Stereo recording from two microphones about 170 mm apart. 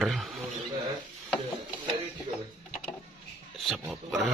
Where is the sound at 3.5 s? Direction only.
Centre (ahead or behind).